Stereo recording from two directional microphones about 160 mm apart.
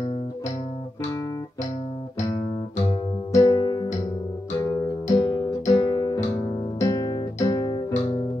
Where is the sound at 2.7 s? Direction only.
45° left (ahead or behind).